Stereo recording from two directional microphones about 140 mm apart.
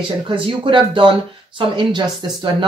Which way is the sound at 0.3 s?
35° right (ahead or behind).